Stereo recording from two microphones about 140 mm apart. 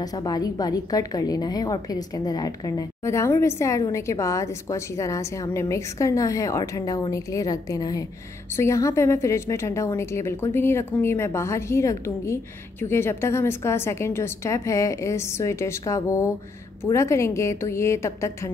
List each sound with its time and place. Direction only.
0.0 s a woman's voice: 25° left (ahead or behind)